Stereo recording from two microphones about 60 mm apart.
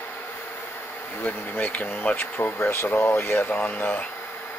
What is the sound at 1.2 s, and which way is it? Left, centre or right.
Speech, left.